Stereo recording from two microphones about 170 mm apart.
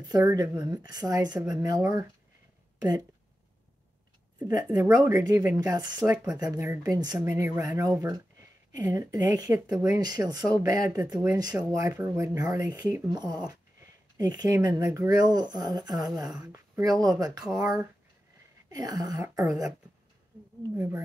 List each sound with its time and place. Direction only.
0.1 s speech: 20° right (ahead or behind)
4.5 s speech: 20° right (ahead or behind)
17.6 s speech: 10° right (ahead or behind)
18.7 s speech: 20° right (ahead or behind)
20.7 s speech: 15° right (ahead or behind)